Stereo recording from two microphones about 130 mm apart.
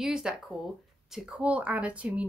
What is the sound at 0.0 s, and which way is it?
A woman's voice, 5° right (ahead or behind).